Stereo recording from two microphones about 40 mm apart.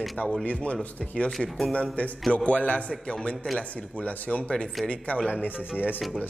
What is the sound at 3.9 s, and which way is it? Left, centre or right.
A man's voice, left.